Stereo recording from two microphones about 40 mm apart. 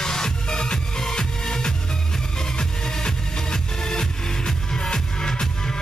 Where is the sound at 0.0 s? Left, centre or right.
Centre.